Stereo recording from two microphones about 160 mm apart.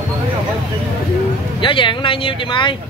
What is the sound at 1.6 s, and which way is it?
Speech, 30° left (ahead or behind).